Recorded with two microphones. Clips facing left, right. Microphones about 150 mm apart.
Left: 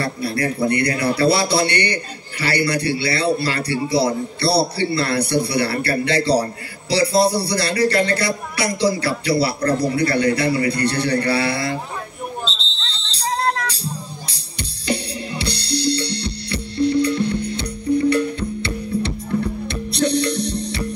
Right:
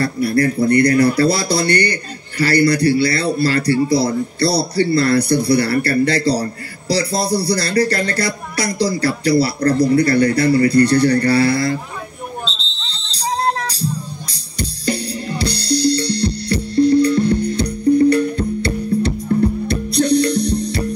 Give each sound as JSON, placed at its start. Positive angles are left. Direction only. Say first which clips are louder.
{"t": 0.3, "sound": "a man's voice", "louder": "right 5 dB", "side_deg": -40}
{"t": 13.5, "sound": "music", "louder": "right 2 dB", "side_deg": -35}
{"t": 14.3, "sound": "drum kit", "louder": "right 7 dB", "side_deg": -40}